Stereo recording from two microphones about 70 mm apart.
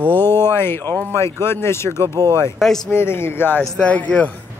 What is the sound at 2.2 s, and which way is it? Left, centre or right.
Speech, right.